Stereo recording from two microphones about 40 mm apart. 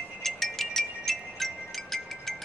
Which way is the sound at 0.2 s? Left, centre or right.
Centre.